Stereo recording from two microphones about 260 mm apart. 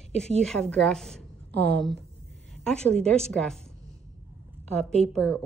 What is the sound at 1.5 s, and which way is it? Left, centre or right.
Speech, right.